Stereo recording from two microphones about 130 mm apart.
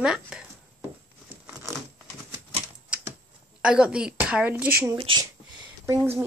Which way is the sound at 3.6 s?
5° right (ahead or behind).